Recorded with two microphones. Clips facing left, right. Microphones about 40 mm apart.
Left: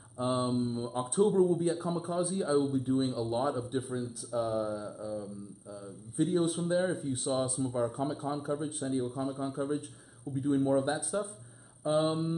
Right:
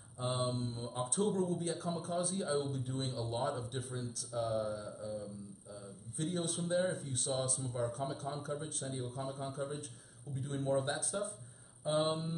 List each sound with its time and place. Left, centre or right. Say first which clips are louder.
0.2 s speech: left 6 dB; centre
11.8 s mantra: left 5 dB; centre